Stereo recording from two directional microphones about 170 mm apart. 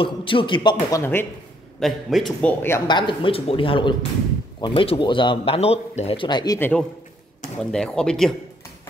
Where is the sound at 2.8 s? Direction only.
30° left (ahead or behind).